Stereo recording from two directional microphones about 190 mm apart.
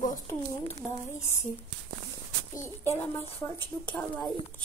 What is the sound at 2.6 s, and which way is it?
Speech, 15° left (ahead or behind).